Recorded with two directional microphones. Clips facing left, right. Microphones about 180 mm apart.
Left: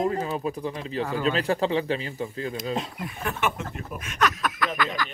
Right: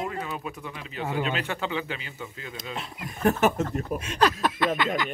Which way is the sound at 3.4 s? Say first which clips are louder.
Right 3 dB; 40° right (ahead or behind).